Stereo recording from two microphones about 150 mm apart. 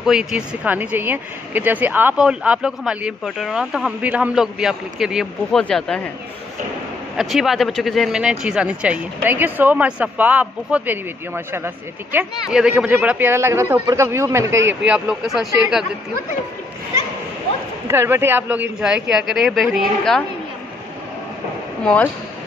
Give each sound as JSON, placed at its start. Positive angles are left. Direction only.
{"t": 0.0, "sound": "speech", "side_deg": -5}
{"t": 7.2, "sound": "speech", "side_deg": 0}
{"t": 14.9, "sound": "speech", "side_deg": -5}
{"t": 17.8, "sound": "speech", "side_deg": -15}
{"t": 21.8, "sound": "speech", "side_deg": 10}